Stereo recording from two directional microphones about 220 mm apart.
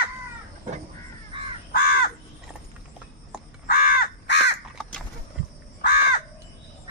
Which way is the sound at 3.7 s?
40° left (ahead or behind).